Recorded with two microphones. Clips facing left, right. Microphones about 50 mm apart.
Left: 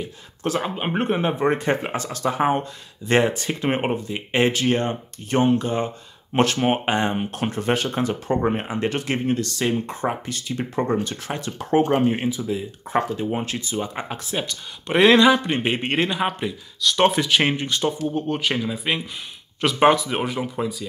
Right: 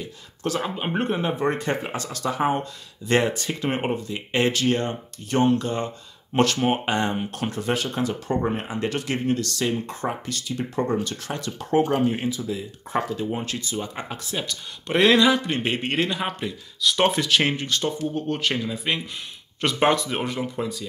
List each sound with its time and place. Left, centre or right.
0.0 s speech: left
7.6 s speech: left
15.1 s speech: left
15.4 s speech: left
16.8 s speech: centre
17.2 s speech: left; by 20.8 s centre